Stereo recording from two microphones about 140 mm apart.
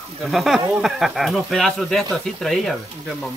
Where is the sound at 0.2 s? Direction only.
Centre (ahead or behind).